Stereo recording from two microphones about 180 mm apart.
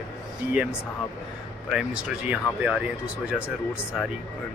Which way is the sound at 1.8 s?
5° right (ahead or behind).